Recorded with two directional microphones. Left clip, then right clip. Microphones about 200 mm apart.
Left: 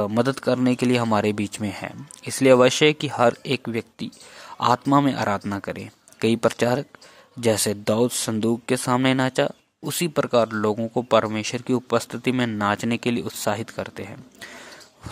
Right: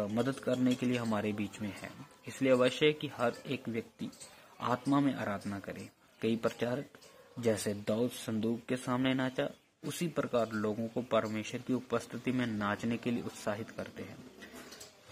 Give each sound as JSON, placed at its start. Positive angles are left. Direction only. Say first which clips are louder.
{"t": 0.0, "sound": "speech", "louder": "left 12 dB", "side_deg": 40}